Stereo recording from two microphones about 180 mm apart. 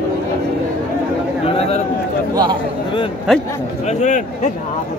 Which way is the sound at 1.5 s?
35° left (ahead or behind).